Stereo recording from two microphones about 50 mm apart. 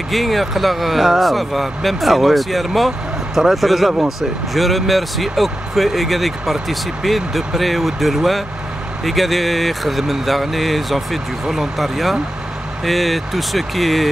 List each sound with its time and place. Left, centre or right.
0.1 s speech: centre
3.9 s speech: centre
4.6 s speech: centre